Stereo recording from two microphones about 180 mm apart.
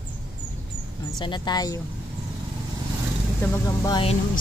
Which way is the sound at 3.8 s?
25° left (ahead or behind).